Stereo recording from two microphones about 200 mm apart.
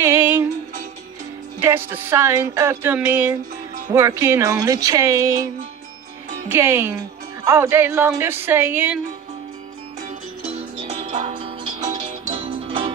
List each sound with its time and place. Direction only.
0.0 s music: 10° right (ahead or behind)
1.6 s speech: 10° right (ahead or behind)
6.5 s speech: 10° right (ahead or behind)
10.9 s music: 30° right (ahead or behind)